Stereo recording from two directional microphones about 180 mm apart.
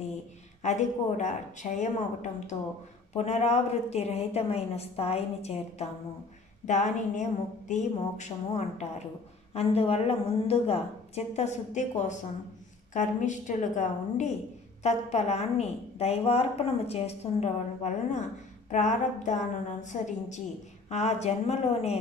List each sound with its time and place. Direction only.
0.6 s a woman's voice: 40° left (ahead or behind)
3.1 s a woman's voice: 40° left (ahead or behind)